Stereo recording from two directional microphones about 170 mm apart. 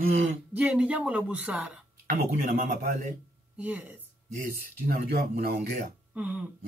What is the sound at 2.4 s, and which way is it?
Speech, 55° right (ahead or behind).